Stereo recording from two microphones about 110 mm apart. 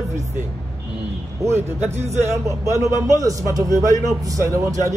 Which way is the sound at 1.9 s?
85° right.